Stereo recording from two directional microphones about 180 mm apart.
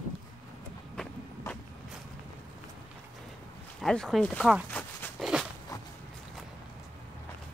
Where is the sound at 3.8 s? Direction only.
Centre (ahead or behind).